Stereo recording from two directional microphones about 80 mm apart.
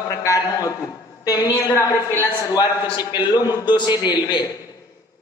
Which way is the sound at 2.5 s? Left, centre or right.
Left.